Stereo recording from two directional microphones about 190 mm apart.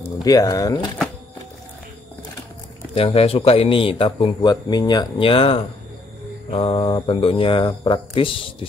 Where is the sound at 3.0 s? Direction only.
30° left (ahead or behind).